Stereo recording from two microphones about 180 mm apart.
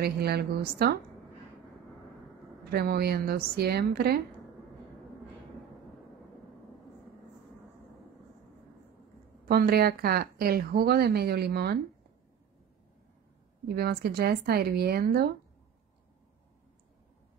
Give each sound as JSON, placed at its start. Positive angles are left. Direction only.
{"t": 0.0, "sound": "speech", "side_deg": -60}
{"t": 2.7, "sound": "speech", "side_deg": -60}
{"t": 9.5, "sound": "speech", "side_deg": -60}
{"t": 13.7, "sound": "speech", "side_deg": -60}